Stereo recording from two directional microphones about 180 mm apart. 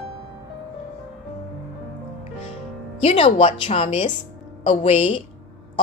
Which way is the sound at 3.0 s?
30° left (ahead or behind).